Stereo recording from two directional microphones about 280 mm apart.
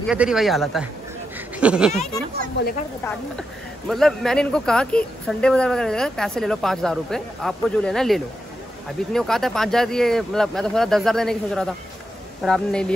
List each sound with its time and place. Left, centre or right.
0.0 s speech: centre
2.6 s a woman's voice: left
3.0 s speech: centre